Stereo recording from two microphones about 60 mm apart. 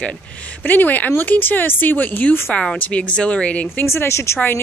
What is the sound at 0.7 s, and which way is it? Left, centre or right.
Speech, left.